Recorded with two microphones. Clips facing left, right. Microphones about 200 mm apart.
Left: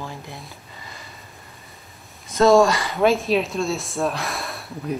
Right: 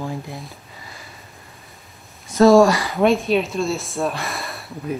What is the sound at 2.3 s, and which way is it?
Speech, centre (ahead or behind).